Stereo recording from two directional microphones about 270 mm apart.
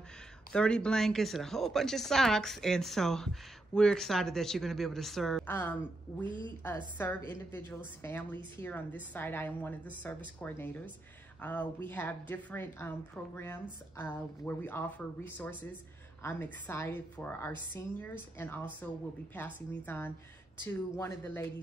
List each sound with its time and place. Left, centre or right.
0.5 s speech: centre
6.2 s a woman's voice: centre
7.0 s a woman's voice: centre